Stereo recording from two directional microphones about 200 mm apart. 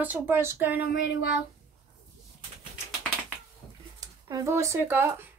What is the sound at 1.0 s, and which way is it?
Speech, 55° left (ahead or behind).